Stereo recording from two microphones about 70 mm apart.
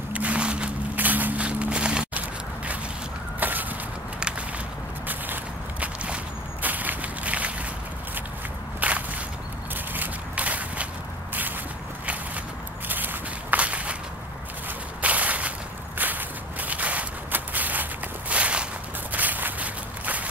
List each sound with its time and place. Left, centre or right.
0.1 s vehicle: centre
0.9 s walk: right
5.0 s walk: right
8.8 s walk: right
12.8 s walk: right
15.0 s walk: right